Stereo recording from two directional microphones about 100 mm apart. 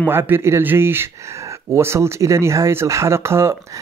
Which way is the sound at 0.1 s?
25° right (ahead or behind).